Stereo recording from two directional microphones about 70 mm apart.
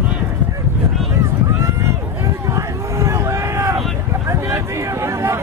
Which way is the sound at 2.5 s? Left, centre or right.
Right.